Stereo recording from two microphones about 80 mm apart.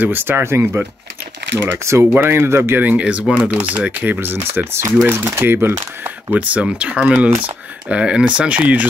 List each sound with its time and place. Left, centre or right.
0.0 s speech: right
1.9 s speech: right
2.8 s speech: centre